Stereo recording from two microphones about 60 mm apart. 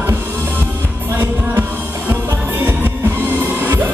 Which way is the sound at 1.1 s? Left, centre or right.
Right.